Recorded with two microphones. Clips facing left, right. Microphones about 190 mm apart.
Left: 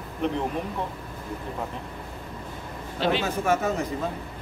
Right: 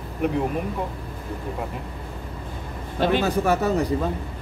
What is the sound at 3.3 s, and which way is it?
Speech, 35° right (ahead or behind).